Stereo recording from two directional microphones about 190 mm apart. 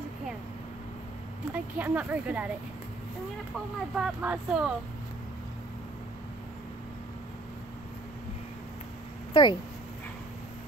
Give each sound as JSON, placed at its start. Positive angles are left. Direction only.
{"t": 1.5, "sound": "speech", "side_deg": -10}
{"t": 3.9, "sound": "speech", "side_deg": -5}
{"t": 9.3, "sound": "speech", "side_deg": 25}